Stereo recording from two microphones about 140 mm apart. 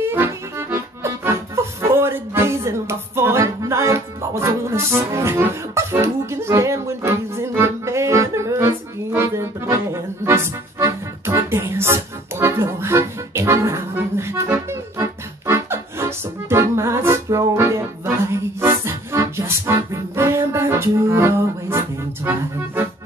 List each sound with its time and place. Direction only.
0.0 s accordion: 15° right (ahead or behind)